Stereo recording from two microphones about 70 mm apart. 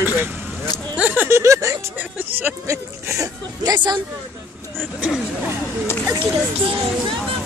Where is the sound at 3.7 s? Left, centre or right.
Right.